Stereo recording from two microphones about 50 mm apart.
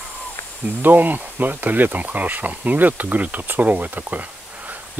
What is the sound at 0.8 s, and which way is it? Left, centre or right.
Speech, right.